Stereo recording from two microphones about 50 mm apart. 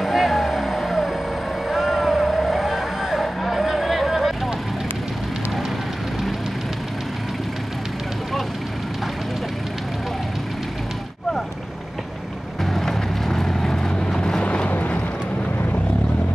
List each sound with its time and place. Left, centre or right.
0.0 s vehicle: centre
12.6 s vehicle: centre; by 15.0 s left